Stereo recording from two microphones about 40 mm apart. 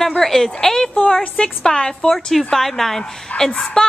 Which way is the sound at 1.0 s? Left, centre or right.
Left.